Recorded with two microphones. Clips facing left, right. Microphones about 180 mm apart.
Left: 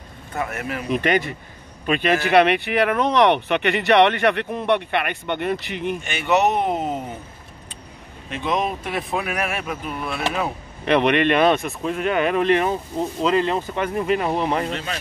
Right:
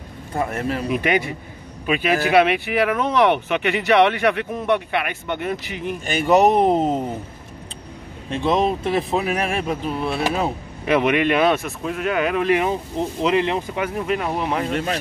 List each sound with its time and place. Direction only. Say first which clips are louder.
0.3 s speech: right 4 dB; 30° right (ahead or behind)
0.8 s speech: left 2 dB; 5° right (ahead or behind)
6.0 s speech: right 5 dB; 35° right (ahead or behind)
8.3 s speech: right 4 dB; 30° right (ahead or behind)
10.9 s speech: even; 5° right (ahead or behind)
13.2 s speech: even; 15° right (ahead or behind); by 14.7 s centre (ahead or behind)